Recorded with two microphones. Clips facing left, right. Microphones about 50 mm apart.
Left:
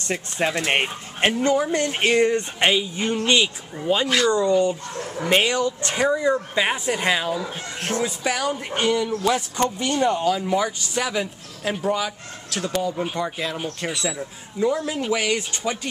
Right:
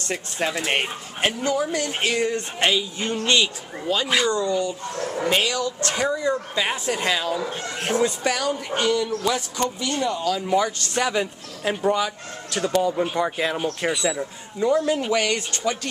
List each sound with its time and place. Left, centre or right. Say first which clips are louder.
0.1 s speech: left 2 dB; centre
4.3 s speech: left 4 dB; left
9.6 s speech: left 3 dB; left
10.4 s speech: right 1 dB; centre
13.2 s speech: right 3 dB; centre